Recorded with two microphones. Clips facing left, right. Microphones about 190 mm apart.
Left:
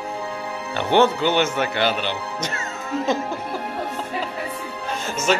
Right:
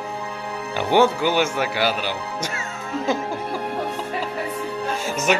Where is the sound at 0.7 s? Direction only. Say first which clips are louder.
Even; 10° right (ahead or behind).